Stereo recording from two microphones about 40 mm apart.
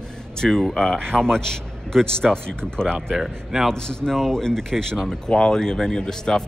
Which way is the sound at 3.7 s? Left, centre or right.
Centre.